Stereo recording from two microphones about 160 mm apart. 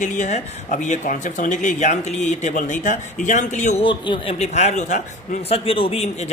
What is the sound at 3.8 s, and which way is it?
A man's voice, 35° left (ahead or behind).